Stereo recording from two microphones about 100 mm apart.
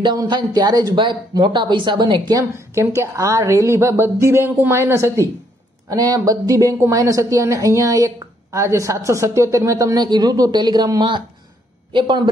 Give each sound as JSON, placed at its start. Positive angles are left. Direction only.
{"t": 0.0, "sound": "speech", "side_deg": -45}
{"t": 2.7, "sound": "a woman's voice", "side_deg": -25}
{"t": 10.0, "sound": "a woman's voice", "side_deg": -45}